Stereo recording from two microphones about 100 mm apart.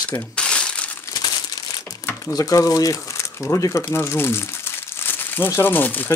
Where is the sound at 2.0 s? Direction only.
35° left (ahead or behind).